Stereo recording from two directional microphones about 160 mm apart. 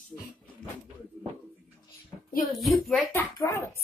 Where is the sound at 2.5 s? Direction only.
Centre (ahead or behind).